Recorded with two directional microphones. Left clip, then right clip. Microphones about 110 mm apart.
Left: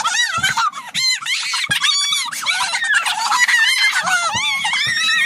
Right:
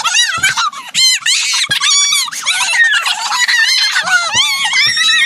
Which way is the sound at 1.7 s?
10° left (ahead or behind).